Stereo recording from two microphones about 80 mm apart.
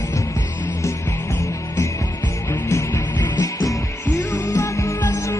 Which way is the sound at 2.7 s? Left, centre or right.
Left.